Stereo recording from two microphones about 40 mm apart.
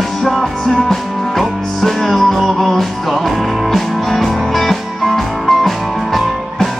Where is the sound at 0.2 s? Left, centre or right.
Centre.